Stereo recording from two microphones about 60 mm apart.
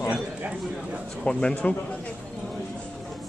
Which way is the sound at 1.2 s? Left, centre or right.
Centre.